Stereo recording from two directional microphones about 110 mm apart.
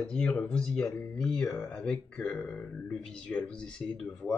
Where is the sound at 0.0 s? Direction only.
10° left (ahead or behind).